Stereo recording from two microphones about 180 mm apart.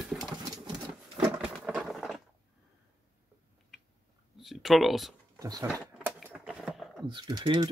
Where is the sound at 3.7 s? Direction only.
Centre (ahead or behind).